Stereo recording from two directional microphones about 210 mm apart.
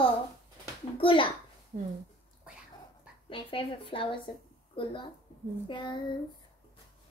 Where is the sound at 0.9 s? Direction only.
25° left (ahead or behind).